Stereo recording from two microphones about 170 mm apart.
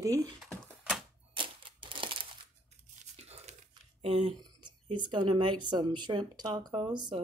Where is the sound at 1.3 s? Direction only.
30° right (ahead or behind).